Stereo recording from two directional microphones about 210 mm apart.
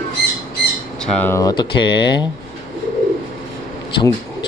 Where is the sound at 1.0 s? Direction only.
10° left (ahead or behind).